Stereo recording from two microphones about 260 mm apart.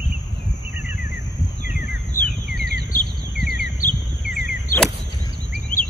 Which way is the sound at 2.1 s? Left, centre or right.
Left.